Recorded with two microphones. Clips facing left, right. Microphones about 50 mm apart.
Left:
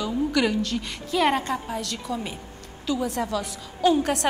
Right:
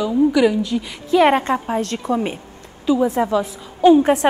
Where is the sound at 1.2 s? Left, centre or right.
Right.